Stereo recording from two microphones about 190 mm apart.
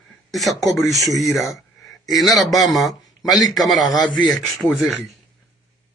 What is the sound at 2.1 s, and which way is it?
Speech, centre (ahead or behind).